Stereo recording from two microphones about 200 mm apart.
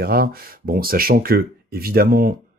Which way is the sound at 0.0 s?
50° right (ahead or behind).